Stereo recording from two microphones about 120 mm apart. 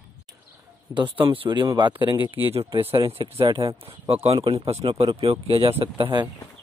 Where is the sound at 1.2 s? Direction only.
45° right (ahead or behind).